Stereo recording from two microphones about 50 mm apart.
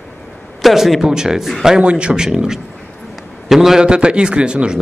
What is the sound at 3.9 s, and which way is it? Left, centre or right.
Speech, centre.